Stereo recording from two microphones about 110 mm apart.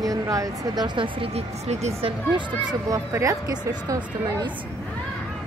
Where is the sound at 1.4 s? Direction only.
80° right.